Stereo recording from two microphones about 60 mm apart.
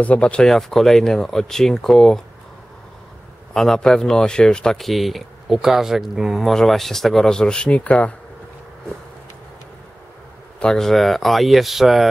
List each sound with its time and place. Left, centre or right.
0.0 s speech: left
0.5 s speech: centre
3.5 s speech: centre; by 8.1 s left
10.6 s speech: centre